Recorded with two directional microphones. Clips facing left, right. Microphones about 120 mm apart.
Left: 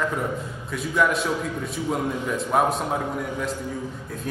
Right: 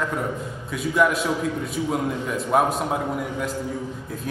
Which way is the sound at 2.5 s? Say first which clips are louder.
Right 1 dB; centre (ahead or behind).